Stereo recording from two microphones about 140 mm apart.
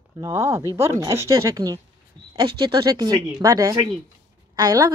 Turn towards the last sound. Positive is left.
turn(degrees=-30)  # may be behind; listen again after turning